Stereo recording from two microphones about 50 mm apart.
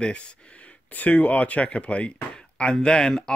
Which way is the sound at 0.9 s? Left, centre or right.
Left.